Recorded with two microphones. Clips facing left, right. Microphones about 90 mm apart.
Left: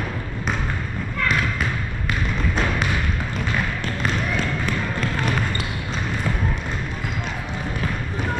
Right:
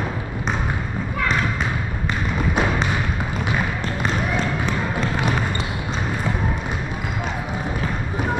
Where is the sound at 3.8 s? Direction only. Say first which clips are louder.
Right 2 dB; 10° right (ahead or behind).